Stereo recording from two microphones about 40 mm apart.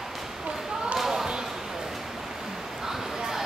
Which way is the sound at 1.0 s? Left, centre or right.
Centre.